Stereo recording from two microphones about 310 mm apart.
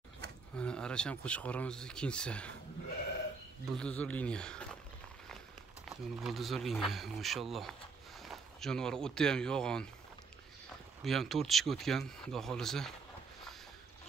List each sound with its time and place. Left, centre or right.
0.2 s a sound: right
0.6 s speech: centre
3.7 s speech: centre
5.9 s speech: centre
11.1 s speech: centre